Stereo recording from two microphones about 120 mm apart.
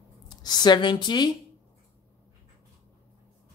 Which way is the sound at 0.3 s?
35° left (ahead or behind).